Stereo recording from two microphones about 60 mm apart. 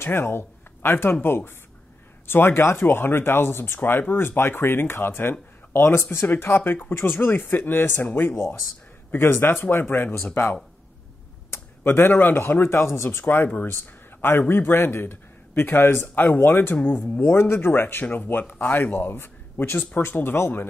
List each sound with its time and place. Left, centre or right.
0.0 s a man's voice: left
8.3 s a man's voice: left
11.5 s a man's voice: left
18.0 s a man's voice: left